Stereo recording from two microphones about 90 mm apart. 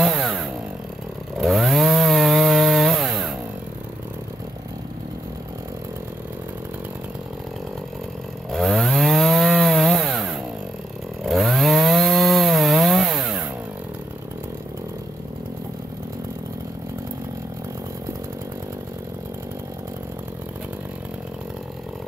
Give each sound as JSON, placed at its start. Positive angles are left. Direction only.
{"t": 0.0, "sound": "chainsaw", "side_deg": 0}
{"t": 8.5, "sound": "chainsaw", "side_deg": 0}